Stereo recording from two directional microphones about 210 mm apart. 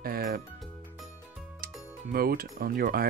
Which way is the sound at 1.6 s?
45° right (ahead or behind).